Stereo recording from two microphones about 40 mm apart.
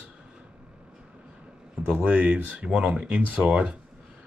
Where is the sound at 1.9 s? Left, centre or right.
Right.